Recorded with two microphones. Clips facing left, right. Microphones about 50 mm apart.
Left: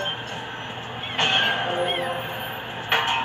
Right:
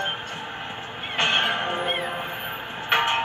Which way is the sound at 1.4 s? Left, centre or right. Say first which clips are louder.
Left 1 dB; centre.